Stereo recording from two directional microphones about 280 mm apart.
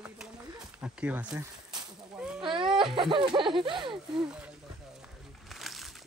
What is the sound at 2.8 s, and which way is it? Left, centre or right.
Speech, centre.